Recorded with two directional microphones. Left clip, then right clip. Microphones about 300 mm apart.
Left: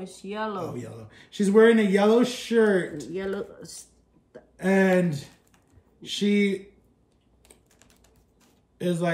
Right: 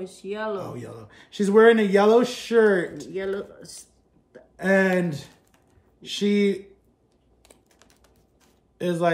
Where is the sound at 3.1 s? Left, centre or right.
Centre.